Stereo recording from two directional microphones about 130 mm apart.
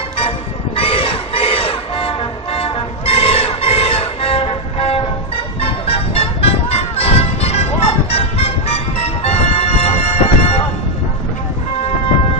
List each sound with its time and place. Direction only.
0.7 s crowd: 45° left (ahead or behind)
5.6 s music: 50° left (ahead or behind)